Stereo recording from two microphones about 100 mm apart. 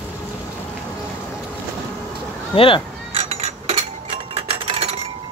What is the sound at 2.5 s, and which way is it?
Speech, 65° left (ahead or behind).